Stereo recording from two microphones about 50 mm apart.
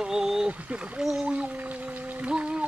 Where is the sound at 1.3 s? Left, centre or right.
Right.